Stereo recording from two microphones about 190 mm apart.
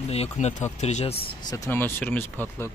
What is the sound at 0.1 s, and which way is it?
Speech, 35° left (ahead or behind).